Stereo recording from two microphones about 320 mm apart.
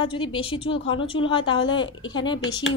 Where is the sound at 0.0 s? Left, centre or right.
Centre.